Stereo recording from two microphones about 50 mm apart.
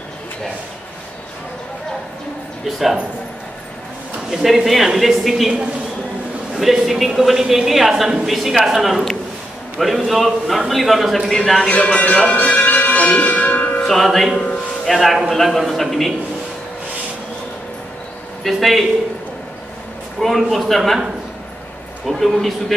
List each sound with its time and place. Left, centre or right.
4.3 s a woman's voice: centre
6.5 s a woman's voice: centre
11.6 s music: left
13.8 s a woman's voice: centre
18.4 s a woman's voice: centre
20.2 s a man's voice: centre
22.0 s a woman's voice: centre